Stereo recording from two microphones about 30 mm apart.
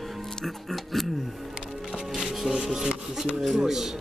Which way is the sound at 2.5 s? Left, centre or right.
Centre.